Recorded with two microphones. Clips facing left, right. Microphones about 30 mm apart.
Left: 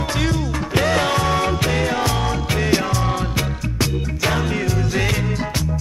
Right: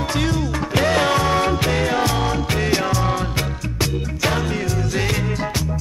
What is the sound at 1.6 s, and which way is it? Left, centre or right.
Music, centre.